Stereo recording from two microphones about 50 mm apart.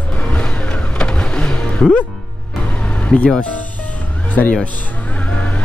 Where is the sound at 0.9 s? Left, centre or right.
Centre.